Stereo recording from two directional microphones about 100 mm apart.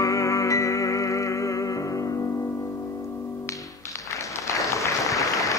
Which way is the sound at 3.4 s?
35° left (ahead or behind).